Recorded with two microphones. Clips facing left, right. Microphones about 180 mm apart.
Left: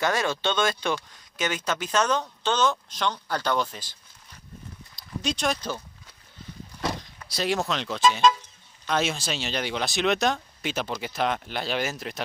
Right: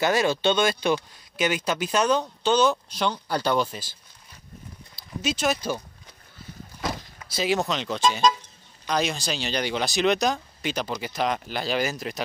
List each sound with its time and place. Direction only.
0.0 s speech: 15° right (ahead or behind)
4.9 s speech: 5° right (ahead or behind)
6.8 s speech: centre (ahead or behind)